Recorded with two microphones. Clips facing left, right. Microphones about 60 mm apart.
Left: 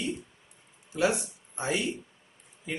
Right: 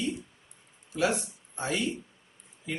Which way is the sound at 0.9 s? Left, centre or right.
Centre.